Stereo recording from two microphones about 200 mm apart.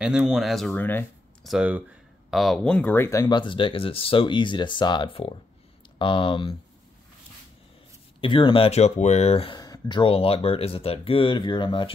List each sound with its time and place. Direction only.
0.0 s speech: 5° right (ahead or behind)
1.5 s speech: 5° right (ahead or behind); by 6.5 s 25° left (ahead or behind)
8.2 s speech: 25° left (ahead or behind)